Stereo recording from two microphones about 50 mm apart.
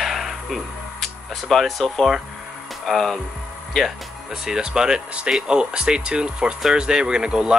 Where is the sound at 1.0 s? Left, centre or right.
Centre.